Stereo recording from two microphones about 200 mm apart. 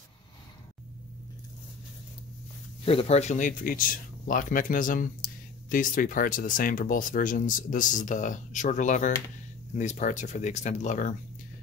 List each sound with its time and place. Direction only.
2.8 s speech: 30° left (ahead or behind)